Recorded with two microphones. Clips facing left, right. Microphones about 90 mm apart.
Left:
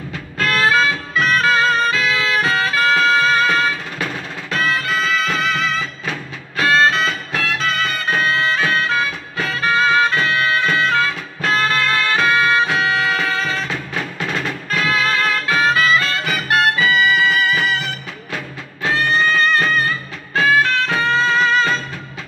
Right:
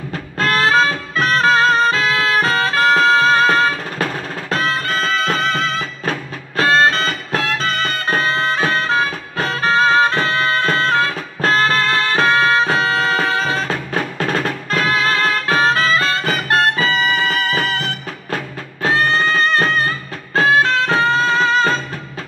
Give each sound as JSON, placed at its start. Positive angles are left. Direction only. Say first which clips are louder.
{"t": 0.4, "sound": "music", "louder": "right 2 dB", "side_deg": -30}
{"t": 0.8, "sound": "music", "louder": "even", "side_deg": -40}
{"t": 1.5, "sound": "music", "louder": "right 3 dB", "side_deg": -25}